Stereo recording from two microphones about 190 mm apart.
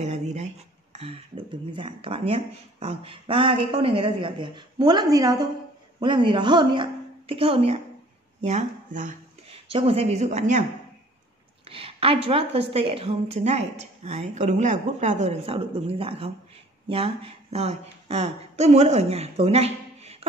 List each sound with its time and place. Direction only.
0.0 s a woman's voice: 35° right (ahead or behind)
9.5 s a woman's voice: 30° right (ahead or behind)
11.7 s a woman's voice: 30° right (ahead or behind)